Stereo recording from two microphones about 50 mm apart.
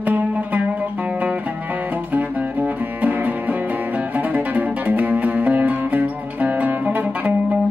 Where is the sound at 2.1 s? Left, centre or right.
Right.